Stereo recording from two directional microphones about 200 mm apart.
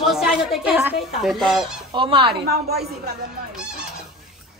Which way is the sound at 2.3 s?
55° right (ahead or behind).